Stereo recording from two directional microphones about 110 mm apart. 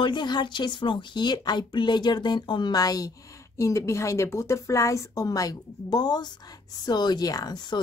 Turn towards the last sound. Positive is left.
turn(degrees=35)  # may be behind; listen again after turning